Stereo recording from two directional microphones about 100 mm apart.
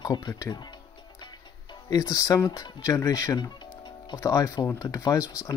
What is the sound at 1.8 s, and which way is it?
Speech, 35° left (ahead or behind).